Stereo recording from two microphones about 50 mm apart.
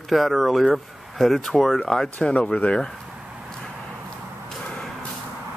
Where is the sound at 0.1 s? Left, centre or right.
Centre.